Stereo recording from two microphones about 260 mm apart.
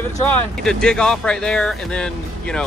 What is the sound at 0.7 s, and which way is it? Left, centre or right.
Speech, centre.